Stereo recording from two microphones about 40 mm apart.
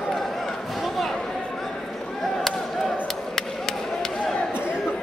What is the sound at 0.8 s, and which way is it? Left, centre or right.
Chatter, centre.